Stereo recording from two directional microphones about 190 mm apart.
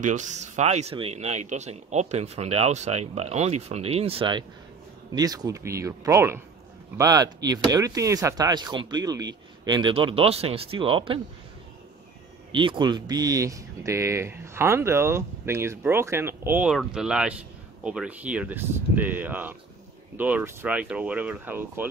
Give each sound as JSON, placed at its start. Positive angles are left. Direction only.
{"t": 0.0, "sound": "speech", "side_deg": -40}
{"t": 12.5, "sound": "speech", "side_deg": -25}